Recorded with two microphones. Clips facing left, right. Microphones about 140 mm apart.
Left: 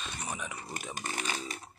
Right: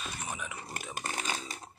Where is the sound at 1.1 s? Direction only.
30° right (ahead or behind).